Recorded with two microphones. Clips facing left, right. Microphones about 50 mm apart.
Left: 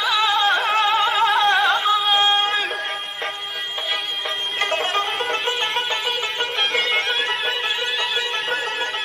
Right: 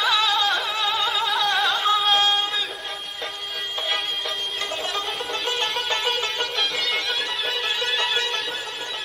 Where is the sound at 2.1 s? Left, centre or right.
Left.